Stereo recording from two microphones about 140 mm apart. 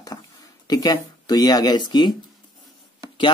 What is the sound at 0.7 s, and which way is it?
Speech, 30° left (ahead or behind).